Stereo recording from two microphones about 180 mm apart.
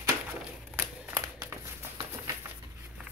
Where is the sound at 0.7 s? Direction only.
15° right (ahead or behind).